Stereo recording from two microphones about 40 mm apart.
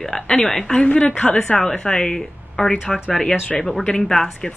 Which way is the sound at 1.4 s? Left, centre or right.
Centre.